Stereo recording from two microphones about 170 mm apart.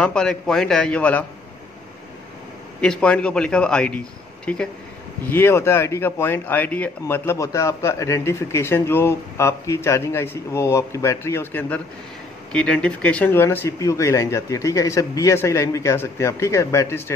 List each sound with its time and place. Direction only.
0.0 s a man's voice: 5° left (ahead or behind)
2.8 s a man's voice: 5° left (ahead or behind)